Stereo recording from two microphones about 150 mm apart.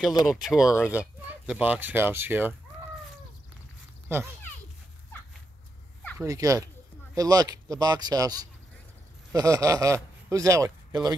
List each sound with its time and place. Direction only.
0.3 s speech: 5° right (ahead or behind)
4.1 s speech: 15° right (ahead or behind)
6.1 s a man's voice: 20° right (ahead or behind)